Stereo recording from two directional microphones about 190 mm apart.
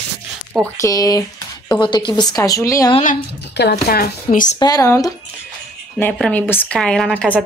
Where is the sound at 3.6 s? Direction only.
55° left (ahead or behind).